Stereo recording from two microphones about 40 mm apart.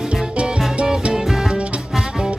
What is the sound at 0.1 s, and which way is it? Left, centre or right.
Music, right.